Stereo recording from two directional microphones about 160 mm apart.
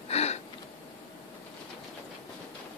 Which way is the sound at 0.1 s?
40° left (ahead or behind).